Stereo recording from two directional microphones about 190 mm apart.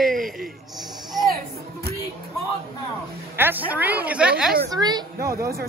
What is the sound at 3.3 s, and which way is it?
A woman's voice, 10° right (ahead or behind).